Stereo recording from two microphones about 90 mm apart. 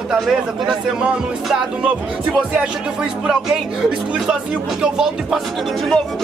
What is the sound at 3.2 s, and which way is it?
A man's voice, 5° right (ahead or behind).